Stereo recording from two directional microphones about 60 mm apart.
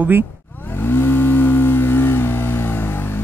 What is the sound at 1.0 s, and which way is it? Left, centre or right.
Vehicle, left.